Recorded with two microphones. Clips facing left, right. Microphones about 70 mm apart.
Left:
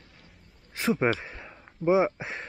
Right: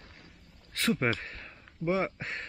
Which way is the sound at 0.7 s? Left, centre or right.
Centre.